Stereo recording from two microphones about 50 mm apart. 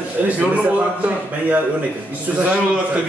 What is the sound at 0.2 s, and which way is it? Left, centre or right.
A man's voice, right.